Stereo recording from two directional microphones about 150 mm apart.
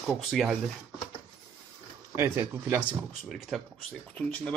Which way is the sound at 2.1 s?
15° right (ahead or behind).